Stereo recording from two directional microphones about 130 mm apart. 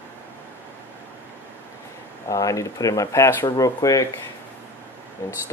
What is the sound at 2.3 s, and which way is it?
Speech, 25° left (ahead or behind).